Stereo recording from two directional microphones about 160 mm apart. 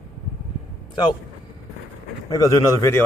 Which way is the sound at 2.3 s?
20° left (ahead or behind).